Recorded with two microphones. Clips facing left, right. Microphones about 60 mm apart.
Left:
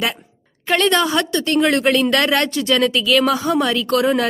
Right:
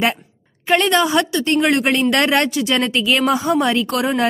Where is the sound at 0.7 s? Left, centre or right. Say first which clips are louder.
Right 1 dB; centre.